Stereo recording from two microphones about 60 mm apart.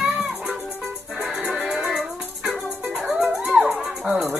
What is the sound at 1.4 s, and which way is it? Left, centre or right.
Music, right.